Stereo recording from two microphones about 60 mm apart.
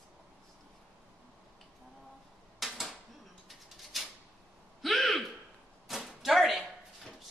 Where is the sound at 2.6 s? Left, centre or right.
Centre.